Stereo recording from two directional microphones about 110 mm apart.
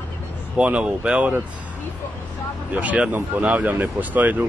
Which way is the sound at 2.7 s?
15° right (ahead or behind).